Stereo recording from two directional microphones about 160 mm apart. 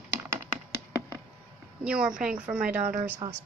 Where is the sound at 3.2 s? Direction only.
30° right (ahead or behind).